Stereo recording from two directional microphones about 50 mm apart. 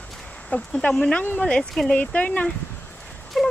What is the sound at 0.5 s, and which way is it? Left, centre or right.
Speech, left.